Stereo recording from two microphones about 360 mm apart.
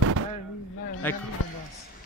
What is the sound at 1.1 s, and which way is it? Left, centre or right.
Speech, centre.